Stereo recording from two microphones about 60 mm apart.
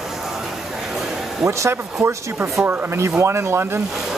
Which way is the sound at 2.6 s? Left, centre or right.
Right.